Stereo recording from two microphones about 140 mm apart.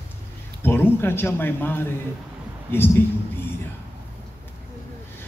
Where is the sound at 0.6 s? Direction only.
15° left (ahead or behind).